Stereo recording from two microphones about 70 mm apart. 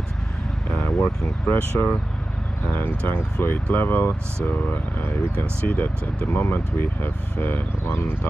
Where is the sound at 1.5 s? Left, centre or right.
Left.